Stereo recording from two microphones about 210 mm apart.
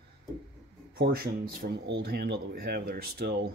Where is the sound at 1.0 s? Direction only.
45° right (ahead or behind).